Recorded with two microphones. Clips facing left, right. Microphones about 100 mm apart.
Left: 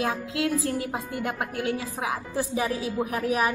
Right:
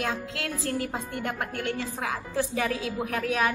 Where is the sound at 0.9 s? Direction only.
5° left (ahead or behind).